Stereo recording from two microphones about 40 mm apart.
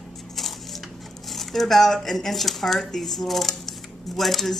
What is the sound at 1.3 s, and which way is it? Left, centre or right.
Speech, centre.